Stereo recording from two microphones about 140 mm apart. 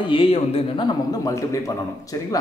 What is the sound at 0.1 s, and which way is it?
A man's voice, 40° left (ahead or behind).